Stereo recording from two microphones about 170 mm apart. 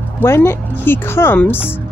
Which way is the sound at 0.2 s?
15° left (ahead or behind).